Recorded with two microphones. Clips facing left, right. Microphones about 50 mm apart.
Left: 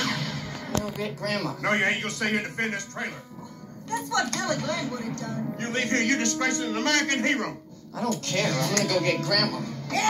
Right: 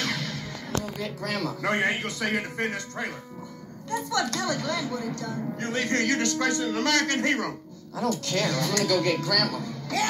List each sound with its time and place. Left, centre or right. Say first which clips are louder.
0.0 s a sound: left 1 dB; left
0.7 s speech: left 2 dB; left
1.4 s speech: even; left